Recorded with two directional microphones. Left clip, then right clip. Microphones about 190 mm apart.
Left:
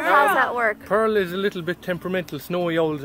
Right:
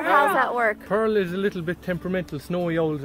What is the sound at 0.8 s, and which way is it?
Speech, 15° left (ahead or behind).